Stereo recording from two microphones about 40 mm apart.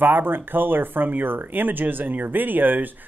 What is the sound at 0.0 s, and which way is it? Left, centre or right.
Speech, right.